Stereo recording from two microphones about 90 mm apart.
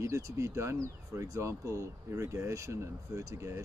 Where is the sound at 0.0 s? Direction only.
35° right (ahead or behind).